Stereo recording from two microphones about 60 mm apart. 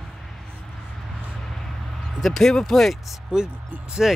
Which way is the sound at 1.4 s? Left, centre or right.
Centre.